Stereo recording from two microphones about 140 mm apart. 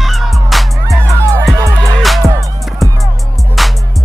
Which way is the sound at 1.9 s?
Centre (ahead or behind).